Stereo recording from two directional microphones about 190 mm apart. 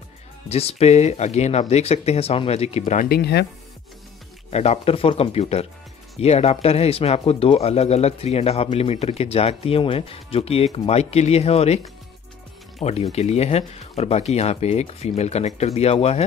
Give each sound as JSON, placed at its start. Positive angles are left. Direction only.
{"t": 0.5, "sound": "speech", "side_deg": 30}
{"t": 3.1, "sound": "speech", "side_deg": 60}
{"t": 4.5, "sound": "speech", "side_deg": 35}
{"t": 13.1, "sound": "speech", "side_deg": 35}